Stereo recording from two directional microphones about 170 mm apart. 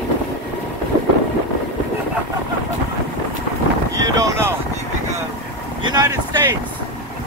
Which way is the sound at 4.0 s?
20° right (ahead or behind).